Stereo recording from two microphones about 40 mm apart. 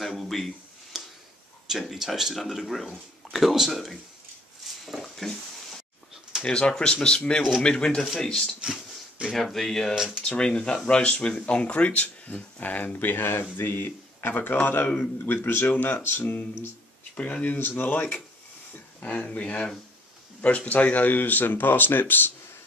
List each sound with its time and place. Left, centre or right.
0.0 s a sound: centre
1.7 s speech: centre
2.6 s speech: centre
5.0 s a sound: centre
6.4 s speech: left
9.3 s speech: centre
9.9 s speech: centre
10.2 s a man's voice: left
15.7 s speech: left
16.0 s speech: left
17.2 s speech: left
17.6 s speech: left